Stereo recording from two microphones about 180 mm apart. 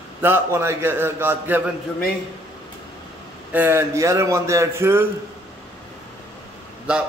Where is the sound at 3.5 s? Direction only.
10° right (ahead or behind).